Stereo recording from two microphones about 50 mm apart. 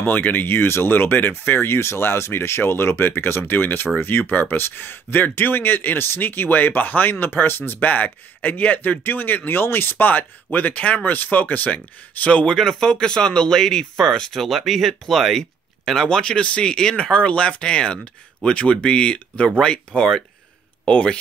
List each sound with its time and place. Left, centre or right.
0.0 s speech: left
7.8 s speech: left
12.5 s speech: centre